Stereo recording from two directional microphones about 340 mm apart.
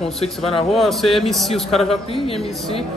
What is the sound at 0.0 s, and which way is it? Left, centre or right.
Speech, centre.